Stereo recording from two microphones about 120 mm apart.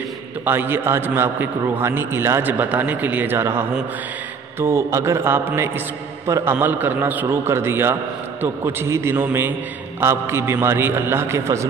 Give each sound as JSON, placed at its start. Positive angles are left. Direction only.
{"t": 0.5, "sound": "a man's voice", "side_deg": -20}